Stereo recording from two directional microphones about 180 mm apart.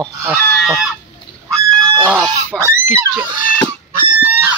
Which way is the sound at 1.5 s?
20° right (ahead or behind).